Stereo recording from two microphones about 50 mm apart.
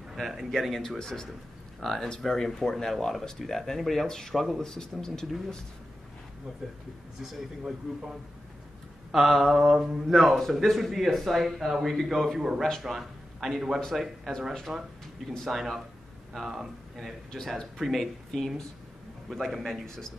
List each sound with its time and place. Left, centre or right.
0.1 s speech: centre
7.6 s a man's voice: centre
14.7 s speech: centre
15.2 s speech: centre
17.3 s speech: centre
17.7 s a man's voice: centre
18.3 s speech: centre